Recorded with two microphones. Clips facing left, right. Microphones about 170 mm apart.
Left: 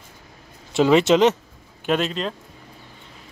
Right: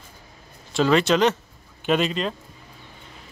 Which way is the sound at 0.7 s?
20° left (ahead or behind).